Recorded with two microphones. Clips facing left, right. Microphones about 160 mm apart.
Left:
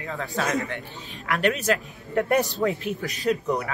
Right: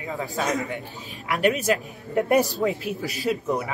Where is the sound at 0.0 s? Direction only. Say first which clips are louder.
Right 1 dB; 15° right (ahead or behind).